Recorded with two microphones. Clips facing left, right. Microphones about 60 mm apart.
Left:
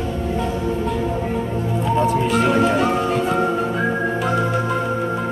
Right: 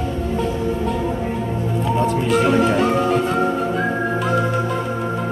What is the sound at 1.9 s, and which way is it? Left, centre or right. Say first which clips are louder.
Music: even; centre.